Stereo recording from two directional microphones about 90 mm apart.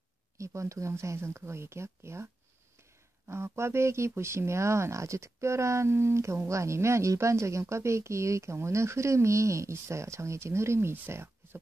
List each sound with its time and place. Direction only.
0.4 s speech: 35° right (ahead or behind)